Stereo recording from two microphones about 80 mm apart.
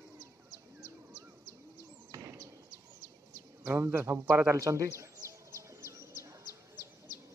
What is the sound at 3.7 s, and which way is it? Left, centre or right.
Speech, right.